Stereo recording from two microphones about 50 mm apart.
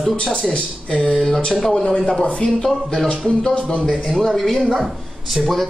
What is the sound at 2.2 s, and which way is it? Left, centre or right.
Speech, centre.